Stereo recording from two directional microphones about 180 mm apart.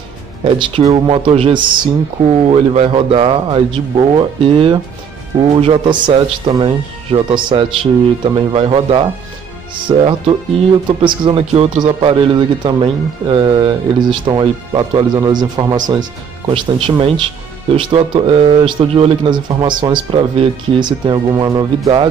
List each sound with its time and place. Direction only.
0.4 s a man's voice: 25° right (ahead or behind)